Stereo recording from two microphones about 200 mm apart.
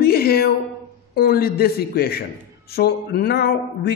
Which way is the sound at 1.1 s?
50° left (ahead or behind).